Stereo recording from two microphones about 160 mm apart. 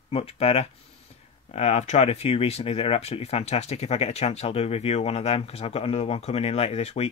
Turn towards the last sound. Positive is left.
turn(degrees=40)  # may be behind; listen again after turning